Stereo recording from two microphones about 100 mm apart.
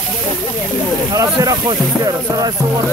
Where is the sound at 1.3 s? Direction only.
45° right (ahead or behind).